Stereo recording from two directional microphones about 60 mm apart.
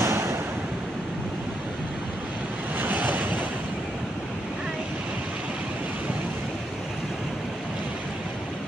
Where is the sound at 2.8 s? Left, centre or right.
Right.